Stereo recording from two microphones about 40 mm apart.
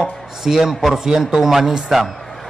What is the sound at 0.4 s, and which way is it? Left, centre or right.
A man's voice, centre.